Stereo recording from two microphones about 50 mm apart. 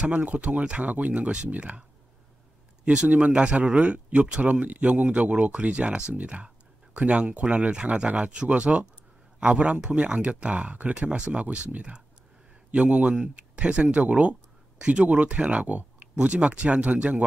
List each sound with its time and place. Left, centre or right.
0.0 s speech: right